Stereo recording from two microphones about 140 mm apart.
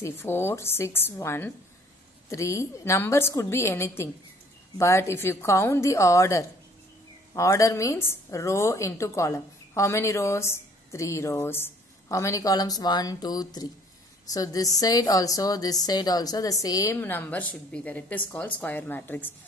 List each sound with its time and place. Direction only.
0.0 s a woman's voice: 15° left (ahead or behind)